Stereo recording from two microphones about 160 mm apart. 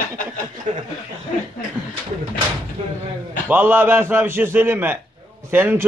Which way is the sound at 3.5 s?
15° right (ahead or behind).